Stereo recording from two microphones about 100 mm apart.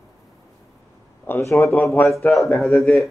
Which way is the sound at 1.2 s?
20° left (ahead or behind).